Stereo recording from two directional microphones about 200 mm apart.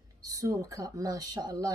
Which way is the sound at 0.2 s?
15° right (ahead or behind).